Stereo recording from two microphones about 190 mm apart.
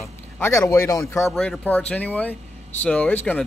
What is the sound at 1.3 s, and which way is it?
Speech, 5° left (ahead or behind).